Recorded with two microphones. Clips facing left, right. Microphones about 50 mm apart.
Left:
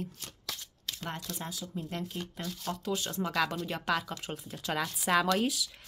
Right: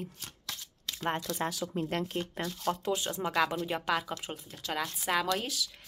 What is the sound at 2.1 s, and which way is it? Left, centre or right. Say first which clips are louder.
Speech: right 5 dB; right.